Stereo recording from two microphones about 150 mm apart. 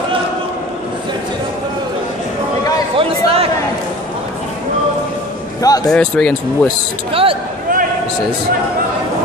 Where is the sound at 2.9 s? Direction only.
40° right (ahead or behind).